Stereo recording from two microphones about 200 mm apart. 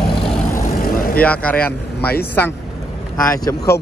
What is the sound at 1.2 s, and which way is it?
Speech, 5° left (ahead or behind).